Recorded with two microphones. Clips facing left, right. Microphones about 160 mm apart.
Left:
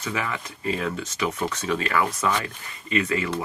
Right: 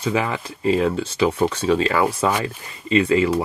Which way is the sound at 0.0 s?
30° right (ahead or behind).